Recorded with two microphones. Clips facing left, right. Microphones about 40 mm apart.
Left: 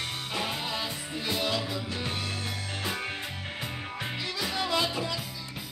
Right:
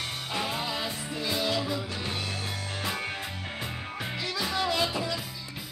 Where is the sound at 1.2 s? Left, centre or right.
Left.